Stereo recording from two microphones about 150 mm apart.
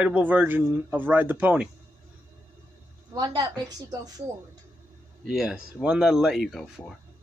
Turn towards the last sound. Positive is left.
turn(degrees=0)  # may be behind; listen again after turning